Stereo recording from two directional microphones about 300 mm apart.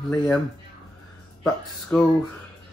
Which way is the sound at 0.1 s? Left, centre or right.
Centre.